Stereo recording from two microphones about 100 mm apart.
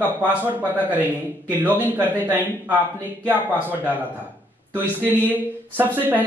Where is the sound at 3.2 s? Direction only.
20° right (ahead or behind).